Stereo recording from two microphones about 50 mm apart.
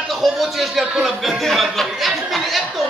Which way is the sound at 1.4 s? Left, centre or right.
Centre.